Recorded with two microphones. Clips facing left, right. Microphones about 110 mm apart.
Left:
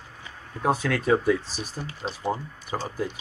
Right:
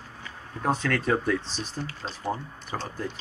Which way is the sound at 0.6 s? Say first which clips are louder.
Left 2 dB; 5° left (ahead or behind).